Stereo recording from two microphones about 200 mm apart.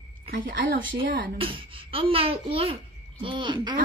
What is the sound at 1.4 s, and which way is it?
A child's voice, 25° right (ahead or behind).